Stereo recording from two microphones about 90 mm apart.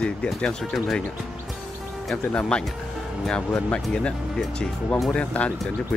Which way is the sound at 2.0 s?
10° left (ahead or behind).